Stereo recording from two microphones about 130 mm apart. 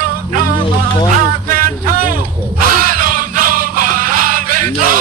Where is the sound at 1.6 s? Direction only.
90° right.